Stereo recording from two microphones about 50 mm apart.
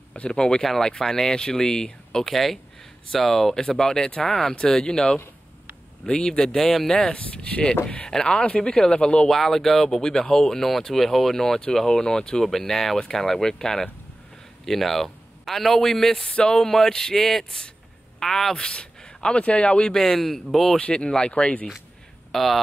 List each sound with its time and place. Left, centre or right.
0.2 s speech: centre
7.2 s speech: left
9.3 s speech: centre; by 19.9 s left
19.9 s speech: centre
20.7 s speech: centre
22.3 s speech: centre